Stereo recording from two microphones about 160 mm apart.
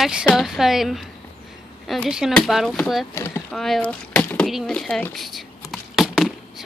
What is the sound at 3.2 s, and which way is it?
Speech, 15° left (ahead or behind).